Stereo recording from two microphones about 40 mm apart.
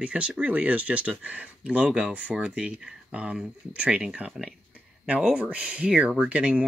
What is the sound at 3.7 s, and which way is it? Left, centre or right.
Speech, right.